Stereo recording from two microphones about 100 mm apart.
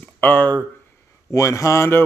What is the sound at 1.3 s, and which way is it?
Speech, 35° left (ahead or behind).